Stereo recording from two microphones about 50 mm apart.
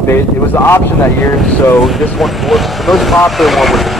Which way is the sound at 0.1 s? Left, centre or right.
Left.